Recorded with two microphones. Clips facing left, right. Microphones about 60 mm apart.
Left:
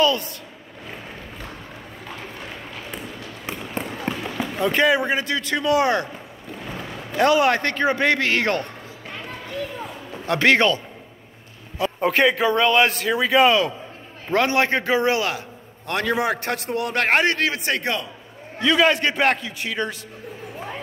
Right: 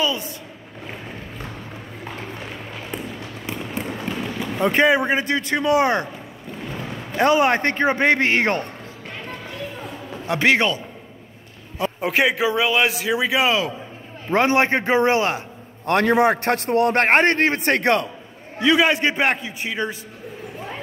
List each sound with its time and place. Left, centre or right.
4.6 s speech: right
7.2 s speech: right
10.2 s a man's voice: centre
12.0 s a man's voice: centre
14.3 s a man's voice: right
18.6 s speech: centre